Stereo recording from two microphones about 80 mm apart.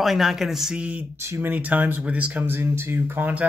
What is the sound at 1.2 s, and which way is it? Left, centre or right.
Speech, right.